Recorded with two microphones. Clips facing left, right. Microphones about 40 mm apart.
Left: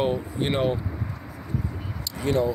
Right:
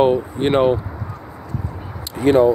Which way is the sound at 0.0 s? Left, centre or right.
Right.